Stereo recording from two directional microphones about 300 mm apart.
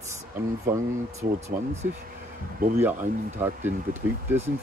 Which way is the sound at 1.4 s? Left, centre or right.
Right.